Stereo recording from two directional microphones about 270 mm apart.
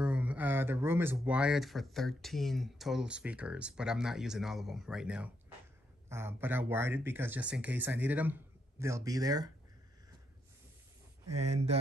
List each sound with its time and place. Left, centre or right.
0.0 s speech: centre
11.5 s mantra: right